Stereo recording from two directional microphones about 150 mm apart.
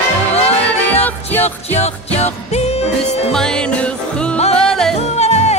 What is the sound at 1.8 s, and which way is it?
Music, 45° left (ahead or behind).